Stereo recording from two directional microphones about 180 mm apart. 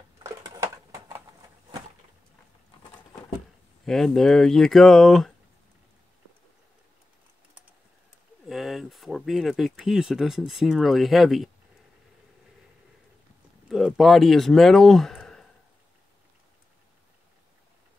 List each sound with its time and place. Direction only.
0.2 s a sound: 20° right (ahead or behind)
3.8 s speech: centre (ahead or behind)
8.5 s speech: centre (ahead or behind)
13.7 s speech: centre (ahead or behind)